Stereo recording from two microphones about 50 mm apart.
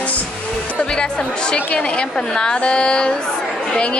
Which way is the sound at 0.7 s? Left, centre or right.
Centre.